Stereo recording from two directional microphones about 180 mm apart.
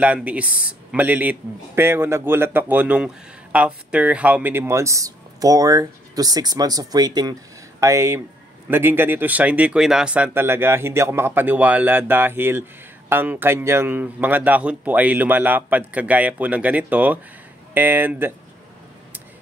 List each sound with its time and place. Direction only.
0.0 s a man's voice: 10° right (ahead or behind)